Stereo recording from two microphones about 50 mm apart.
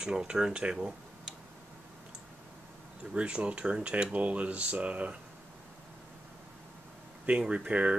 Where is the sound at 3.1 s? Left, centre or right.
Right.